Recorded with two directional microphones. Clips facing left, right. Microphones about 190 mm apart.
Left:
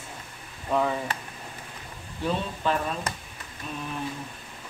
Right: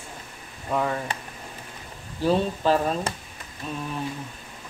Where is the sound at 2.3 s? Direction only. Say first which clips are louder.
Right 6 dB; 35° right (ahead or behind).